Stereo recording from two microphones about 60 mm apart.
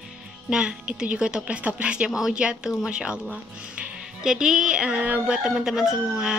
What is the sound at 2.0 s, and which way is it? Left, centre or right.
A woman's voice, centre.